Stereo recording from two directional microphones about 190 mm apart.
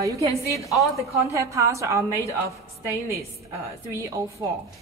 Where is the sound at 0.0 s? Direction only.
15° right (ahead or behind).